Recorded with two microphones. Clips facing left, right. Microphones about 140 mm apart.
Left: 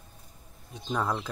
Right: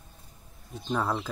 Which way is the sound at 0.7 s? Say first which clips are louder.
Right 1 dB; 5° right (ahead or behind).